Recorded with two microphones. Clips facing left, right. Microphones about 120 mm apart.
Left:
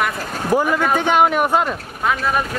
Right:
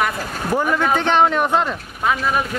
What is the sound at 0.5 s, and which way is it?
Speech, 10° left (ahead or behind).